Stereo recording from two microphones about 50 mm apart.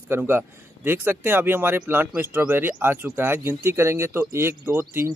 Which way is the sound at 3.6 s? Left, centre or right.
Right.